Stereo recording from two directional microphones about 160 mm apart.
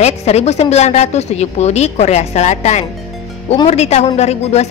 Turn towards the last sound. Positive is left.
turn(degrees=40)  # may be behind; listen again after turning